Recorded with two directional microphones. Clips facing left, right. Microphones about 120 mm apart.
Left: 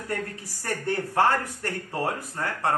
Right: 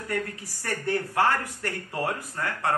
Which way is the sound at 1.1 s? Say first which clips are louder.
Left 3 dB; 35° left (ahead or behind).